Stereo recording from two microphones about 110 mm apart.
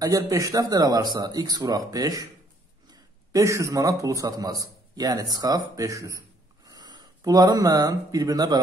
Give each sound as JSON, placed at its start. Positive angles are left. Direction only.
{"t": 0.0, "sound": "a man's voice", "side_deg": -30}